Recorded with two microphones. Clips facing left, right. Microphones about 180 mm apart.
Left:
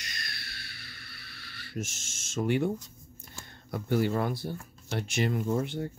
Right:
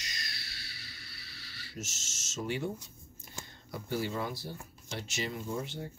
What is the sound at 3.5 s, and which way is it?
Speech, 55° left (ahead or behind).